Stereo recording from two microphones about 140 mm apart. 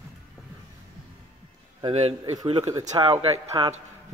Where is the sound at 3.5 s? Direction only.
20° right (ahead or behind).